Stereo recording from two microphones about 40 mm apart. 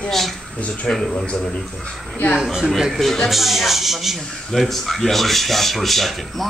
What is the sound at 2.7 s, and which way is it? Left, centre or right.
Speech, centre.